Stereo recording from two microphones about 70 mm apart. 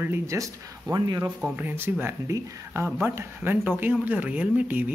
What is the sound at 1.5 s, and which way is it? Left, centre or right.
Speech, right.